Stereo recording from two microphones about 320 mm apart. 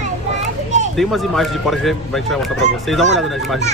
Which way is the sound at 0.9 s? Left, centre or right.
Centre.